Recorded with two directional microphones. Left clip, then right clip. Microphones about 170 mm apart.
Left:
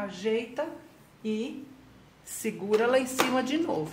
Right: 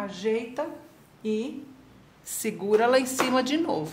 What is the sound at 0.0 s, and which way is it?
Speech, 15° right (ahead or behind).